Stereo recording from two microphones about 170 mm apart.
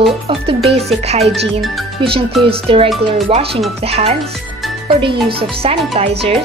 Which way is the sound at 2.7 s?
30° right (ahead or behind).